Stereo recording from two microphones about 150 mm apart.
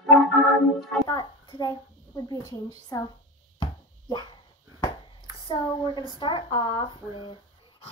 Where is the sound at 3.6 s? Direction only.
30° left (ahead or behind).